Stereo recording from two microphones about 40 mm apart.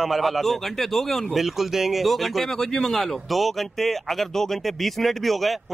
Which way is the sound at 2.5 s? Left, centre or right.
Centre.